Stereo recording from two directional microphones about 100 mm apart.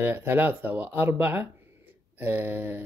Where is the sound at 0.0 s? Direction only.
20° right (ahead or behind).